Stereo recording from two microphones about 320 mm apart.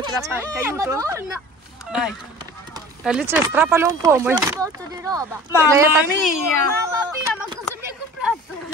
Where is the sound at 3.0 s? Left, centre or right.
Centre.